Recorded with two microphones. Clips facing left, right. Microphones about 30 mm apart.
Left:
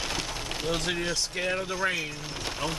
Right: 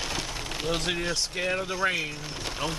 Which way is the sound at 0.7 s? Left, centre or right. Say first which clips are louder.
Right 1 dB; centre.